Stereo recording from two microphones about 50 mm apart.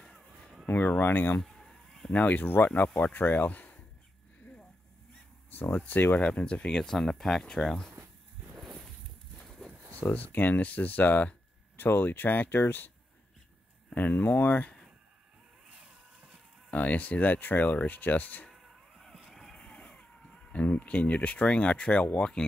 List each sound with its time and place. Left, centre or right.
0.7 s speech: left
1.4 s chicken: centre
2.1 s speech: left
6.1 s speech: left
9.4 s a sound: centre
10.0 s speech: left
13.9 s speech: left
15.9 s a sound: right
16.7 s speech: left
18.5 s a sound: centre
19.5 s a sound: centre
20.5 s speech: left